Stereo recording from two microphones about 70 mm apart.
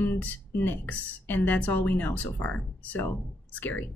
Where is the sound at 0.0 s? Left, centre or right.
Left.